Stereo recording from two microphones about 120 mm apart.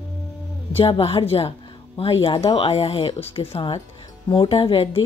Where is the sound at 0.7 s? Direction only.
50° left (ahead or behind).